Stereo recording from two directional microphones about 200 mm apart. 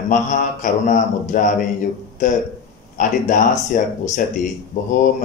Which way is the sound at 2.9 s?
40° left (ahead or behind).